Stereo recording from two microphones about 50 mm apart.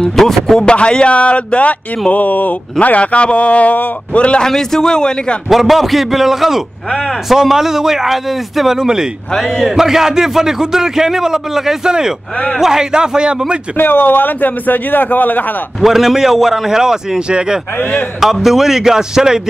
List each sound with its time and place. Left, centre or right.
0.1 s a man's voice: centre
0.6 s speech: centre
4.4 s a man's voice: centre
5.5 s a man's voice: centre
6.9 s a man's voice: centre
7.2 s a man's voice: centre
13.7 s a man's voice: left
15.8 s a man's voice: centre
18.2 s a man's voice: centre